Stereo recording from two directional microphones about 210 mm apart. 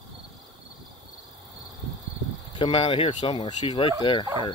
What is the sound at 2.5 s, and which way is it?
Speech, 25° left (ahead or behind).